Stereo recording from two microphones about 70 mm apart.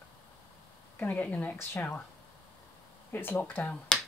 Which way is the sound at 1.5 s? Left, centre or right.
Left.